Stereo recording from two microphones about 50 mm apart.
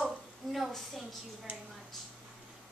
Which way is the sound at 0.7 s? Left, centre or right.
Centre.